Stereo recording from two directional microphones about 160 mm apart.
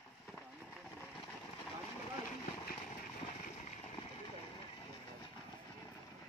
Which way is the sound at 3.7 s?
40° left (ahead or behind).